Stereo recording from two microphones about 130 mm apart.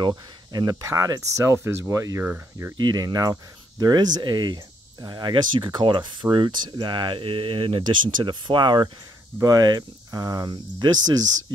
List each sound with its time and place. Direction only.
0.5 s speech: 30° right (ahead or behind)
2.2 s cricket: 15° right (ahead or behind)
2.8 s speech: 30° right (ahead or behind)